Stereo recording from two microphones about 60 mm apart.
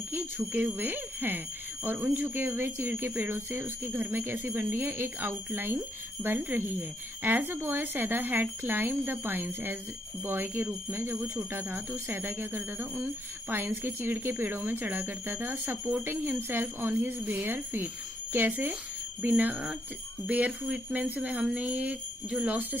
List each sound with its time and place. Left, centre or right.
0.1 s speech: right